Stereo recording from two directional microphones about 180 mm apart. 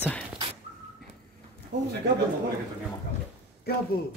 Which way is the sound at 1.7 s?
75° right (ahead or behind).